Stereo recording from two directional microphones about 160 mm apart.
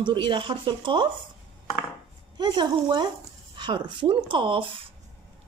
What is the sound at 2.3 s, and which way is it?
Speech, 25° right (ahead or behind).